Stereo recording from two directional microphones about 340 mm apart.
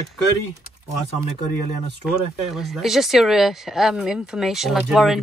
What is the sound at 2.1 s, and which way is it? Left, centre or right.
Speech, centre.